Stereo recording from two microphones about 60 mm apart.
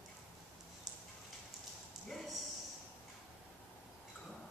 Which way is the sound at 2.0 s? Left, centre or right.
Centre.